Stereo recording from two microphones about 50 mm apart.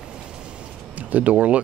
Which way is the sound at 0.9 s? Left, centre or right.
Right.